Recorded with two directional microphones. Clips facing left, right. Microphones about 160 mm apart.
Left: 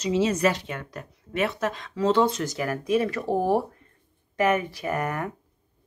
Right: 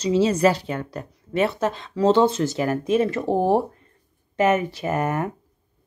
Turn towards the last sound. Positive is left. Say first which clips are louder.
# right 4 dB
turn(degrees=-25)  # may be behind; listen again after turning